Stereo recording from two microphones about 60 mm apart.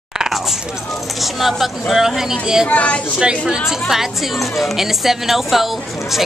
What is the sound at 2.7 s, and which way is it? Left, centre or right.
Speech, left.